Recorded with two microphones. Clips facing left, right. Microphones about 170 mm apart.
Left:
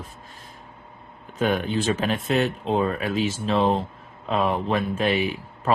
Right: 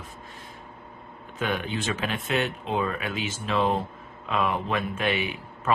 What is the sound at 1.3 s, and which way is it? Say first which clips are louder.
Speech: left 6 dB; 40° left (ahead or behind).